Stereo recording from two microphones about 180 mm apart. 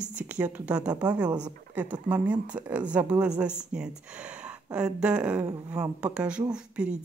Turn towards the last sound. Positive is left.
turn(degrees=-5)  # may be behind; listen again after turning